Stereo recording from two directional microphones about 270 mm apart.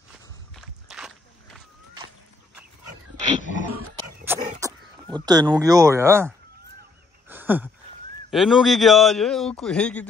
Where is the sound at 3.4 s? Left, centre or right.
Left.